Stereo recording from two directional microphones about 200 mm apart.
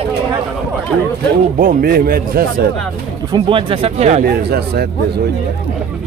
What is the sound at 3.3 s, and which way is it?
Speech, 25° right (ahead or behind).